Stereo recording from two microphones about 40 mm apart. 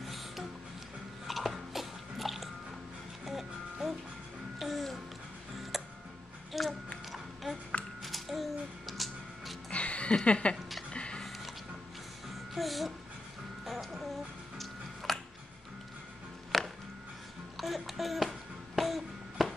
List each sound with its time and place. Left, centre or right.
0.0 s music: centre
1.2 s biting: centre
3.3 s music: centre
6.5 s a sound: centre
8.0 s music: centre
9.7 s a sound: left
10.9 s music: left
12.5 s music: centre
15.1 s music: centre
16.5 s music: centre
18.8 s a sound: centre